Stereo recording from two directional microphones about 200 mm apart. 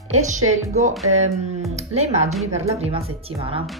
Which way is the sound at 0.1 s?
35° right (ahead or behind).